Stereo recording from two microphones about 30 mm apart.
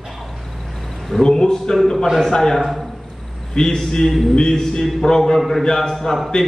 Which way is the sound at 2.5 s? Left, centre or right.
Centre.